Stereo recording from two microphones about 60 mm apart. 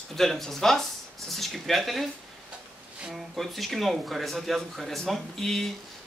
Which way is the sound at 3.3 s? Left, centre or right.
Centre.